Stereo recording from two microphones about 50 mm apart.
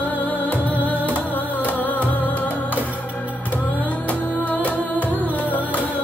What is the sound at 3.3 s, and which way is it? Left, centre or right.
Music, left.